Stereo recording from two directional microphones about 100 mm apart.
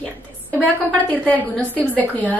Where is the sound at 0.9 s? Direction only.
15° left (ahead or behind).